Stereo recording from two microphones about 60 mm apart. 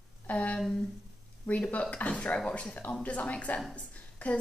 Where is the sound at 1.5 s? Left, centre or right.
Left.